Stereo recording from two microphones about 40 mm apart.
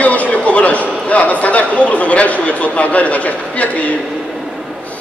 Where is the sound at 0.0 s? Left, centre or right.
Left.